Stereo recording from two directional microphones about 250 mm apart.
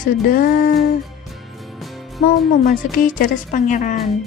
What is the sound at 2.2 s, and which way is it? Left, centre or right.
A woman's voice, left.